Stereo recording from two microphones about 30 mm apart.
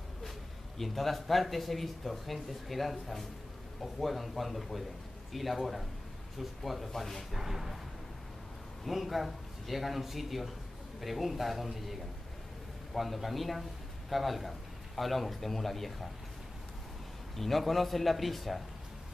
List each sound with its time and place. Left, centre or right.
0.7 s speech: centre
7.3 s speech: centre
8.8 s a man's voice: centre
17.4 s speech: centre